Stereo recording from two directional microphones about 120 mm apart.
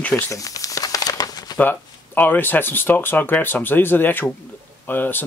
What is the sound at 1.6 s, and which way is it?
Speech, 15° left (ahead or behind).